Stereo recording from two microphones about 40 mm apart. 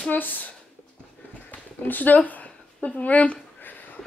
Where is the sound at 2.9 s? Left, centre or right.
Left.